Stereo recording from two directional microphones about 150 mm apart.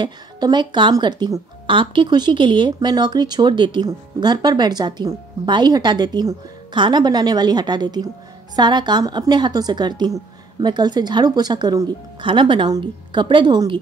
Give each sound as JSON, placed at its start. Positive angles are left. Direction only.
{"t": 0.0, "sound": "speech", "side_deg": -30}